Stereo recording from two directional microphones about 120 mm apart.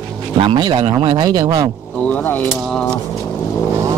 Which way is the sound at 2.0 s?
15° left (ahead or behind).